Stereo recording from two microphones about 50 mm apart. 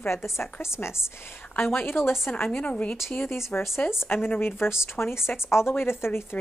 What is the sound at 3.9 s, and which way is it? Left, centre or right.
Speech, left.